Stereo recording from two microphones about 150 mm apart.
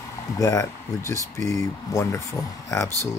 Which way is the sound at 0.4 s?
20° left (ahead or behind).